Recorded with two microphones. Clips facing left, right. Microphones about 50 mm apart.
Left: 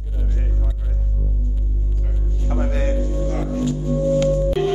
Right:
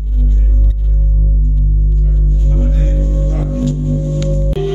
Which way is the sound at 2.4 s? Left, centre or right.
Left.